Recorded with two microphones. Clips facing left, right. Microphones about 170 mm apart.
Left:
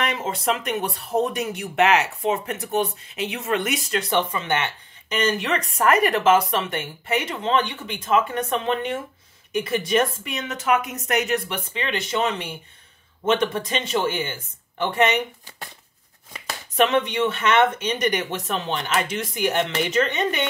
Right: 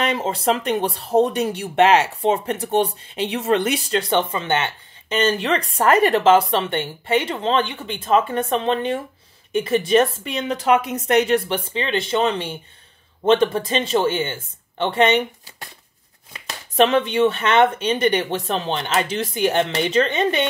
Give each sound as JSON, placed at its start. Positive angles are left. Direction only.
{"t": 0.0, "sound": "speech", "side_deg": -30}
{"t": 16.7, "sound": "speech", "side_deg": -30}